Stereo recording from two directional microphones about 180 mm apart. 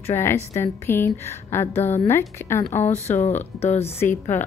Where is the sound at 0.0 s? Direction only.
15° left (ahead or behind).